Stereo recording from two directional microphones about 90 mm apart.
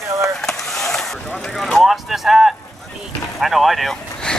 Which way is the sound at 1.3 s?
5° left (ahead or behind).